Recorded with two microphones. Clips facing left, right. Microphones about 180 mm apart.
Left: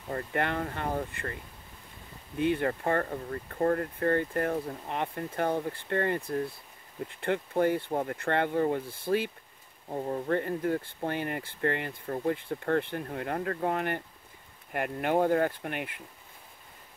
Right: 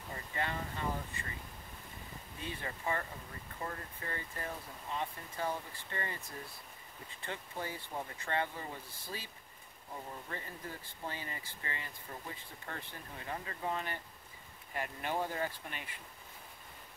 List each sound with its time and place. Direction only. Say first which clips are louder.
0.1 s speech: left 9 dB; 60° left (ahead or behind)
2.3 s speech: left 16 dB; 65° left (ahead or behind)